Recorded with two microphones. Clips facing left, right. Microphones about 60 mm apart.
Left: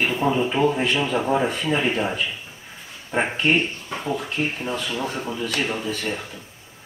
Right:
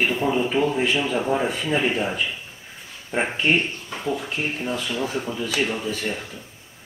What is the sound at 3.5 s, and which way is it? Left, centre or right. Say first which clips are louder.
Speech: left 1 dB; centre.